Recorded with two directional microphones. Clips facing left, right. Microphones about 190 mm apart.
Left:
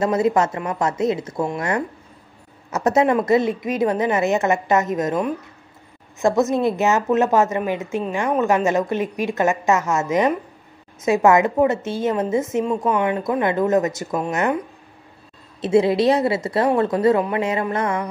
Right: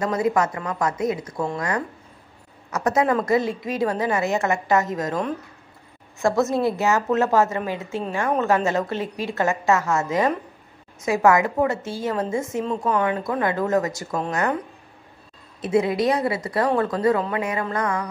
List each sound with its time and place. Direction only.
0.0 s a woman's voice: 25° left (ahead or behind)
15.6 s a woman's voice: 30° left (ahead or behind)